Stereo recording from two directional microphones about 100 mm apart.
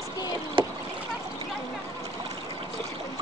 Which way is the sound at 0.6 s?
55° right (ahead or behind).